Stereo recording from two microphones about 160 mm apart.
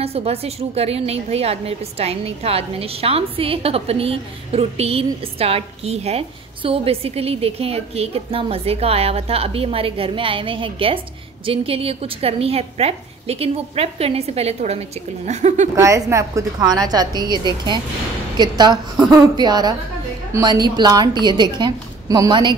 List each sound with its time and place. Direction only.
0.0 s a woman's voice: 40° right (ahead or behind)
15.7 s a woman's voice: 20° right (ahead or behind)